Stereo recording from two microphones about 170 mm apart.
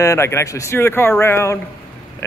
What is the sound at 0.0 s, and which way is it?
A man's voice, 15° left (ahead or behind).